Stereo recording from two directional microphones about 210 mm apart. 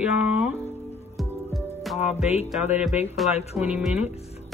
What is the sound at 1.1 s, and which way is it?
Music, centre (ahead or behind).